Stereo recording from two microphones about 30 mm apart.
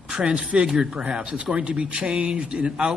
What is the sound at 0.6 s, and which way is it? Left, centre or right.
Speech, centre.